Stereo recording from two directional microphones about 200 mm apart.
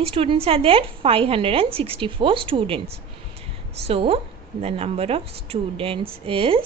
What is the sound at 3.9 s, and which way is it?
A woman's voice, 30° right (ahead or behind).